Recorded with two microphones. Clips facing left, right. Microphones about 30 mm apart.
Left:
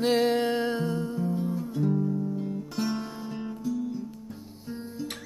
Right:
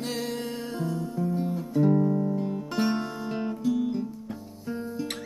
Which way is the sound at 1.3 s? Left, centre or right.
Right.